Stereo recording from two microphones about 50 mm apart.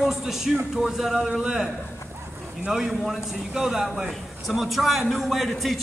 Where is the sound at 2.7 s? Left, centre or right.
Centre.